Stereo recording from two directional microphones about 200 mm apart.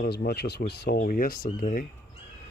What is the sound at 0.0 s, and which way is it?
Speech, 50° left (ahead or behind).